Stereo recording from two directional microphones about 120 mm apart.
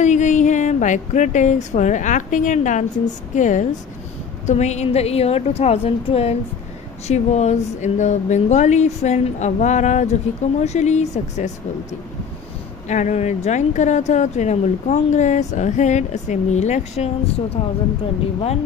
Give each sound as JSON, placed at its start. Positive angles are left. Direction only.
{"t": 0.0, "sound": "speech", "side_deg": 90}
{"t": 4.5, "sound": "a woman's voice", "side_deg": 70}
{"t": 7.1, "sound": "speech", "side_deg": 70}
{"t": 12.8, "sound": "speech", "side_deg": 80}